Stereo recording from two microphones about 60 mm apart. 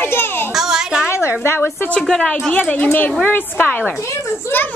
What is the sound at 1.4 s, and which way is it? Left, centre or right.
Speech, left.